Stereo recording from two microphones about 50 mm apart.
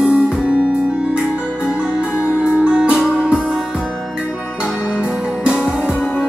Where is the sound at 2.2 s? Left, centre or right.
Right.